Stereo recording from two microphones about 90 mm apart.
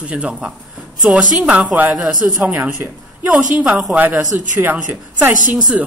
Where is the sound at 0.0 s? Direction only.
15° right (ahead or behind).